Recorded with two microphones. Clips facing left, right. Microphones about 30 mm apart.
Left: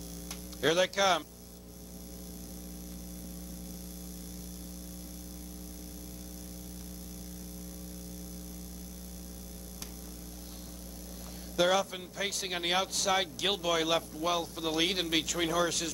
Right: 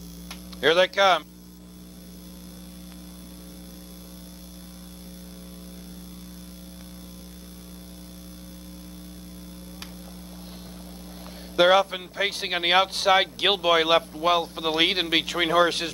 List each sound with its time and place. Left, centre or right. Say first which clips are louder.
0.6 s a man's voice: right 8 dB; right
11.5 s a man's voice: right 9 dB; right